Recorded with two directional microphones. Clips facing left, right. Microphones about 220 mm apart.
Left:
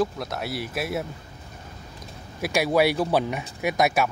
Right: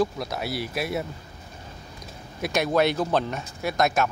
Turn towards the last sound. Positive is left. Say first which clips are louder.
# left 1 dB
turn(degrees=10)  # may be behind; listen again after turning